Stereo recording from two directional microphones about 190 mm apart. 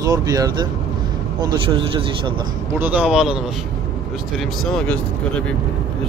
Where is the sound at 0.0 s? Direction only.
20° right (ahead or behind).